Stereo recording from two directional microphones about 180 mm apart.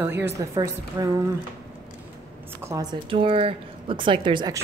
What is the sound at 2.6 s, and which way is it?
Speech, 20° right (ahead or behind).